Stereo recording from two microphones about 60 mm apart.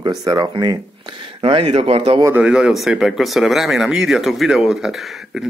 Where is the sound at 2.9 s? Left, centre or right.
Centre.